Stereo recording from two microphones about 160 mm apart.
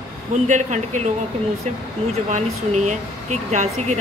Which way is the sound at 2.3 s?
50° right (ahead or behind).